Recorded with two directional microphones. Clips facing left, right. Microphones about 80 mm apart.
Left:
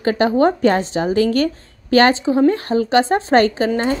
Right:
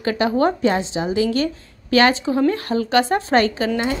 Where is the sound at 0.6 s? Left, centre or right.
Left.